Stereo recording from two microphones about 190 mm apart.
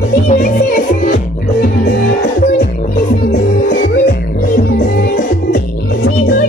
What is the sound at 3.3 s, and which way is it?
Music, 55° left (ahead or behind).